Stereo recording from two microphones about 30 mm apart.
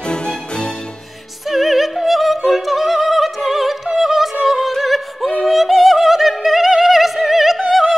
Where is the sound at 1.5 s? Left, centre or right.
Centre.